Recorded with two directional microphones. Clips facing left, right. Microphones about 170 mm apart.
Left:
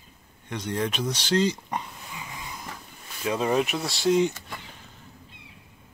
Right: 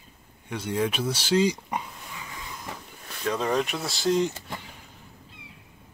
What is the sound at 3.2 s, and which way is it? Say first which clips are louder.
Speech: left 2 dB; 10° left (ahead or behind).